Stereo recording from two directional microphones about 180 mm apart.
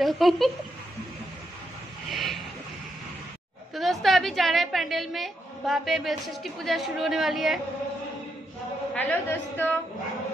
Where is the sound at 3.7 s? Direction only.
Centre (ahead or behind).